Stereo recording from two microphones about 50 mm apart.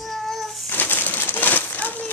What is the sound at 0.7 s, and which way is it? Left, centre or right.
Bird, left.